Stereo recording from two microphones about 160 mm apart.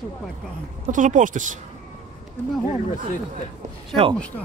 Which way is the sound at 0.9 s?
55° right (ahead or behind).